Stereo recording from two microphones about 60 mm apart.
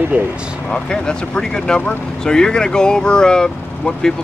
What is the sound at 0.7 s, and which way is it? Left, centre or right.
Speech, centre.